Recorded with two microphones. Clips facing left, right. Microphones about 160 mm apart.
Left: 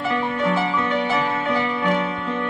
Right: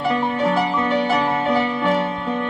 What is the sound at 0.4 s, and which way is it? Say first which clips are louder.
Music: right 2 dB; 35° right (ahead or behind).